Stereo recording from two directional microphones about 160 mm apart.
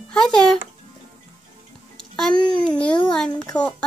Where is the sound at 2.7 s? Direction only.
5° left (ahead or behind).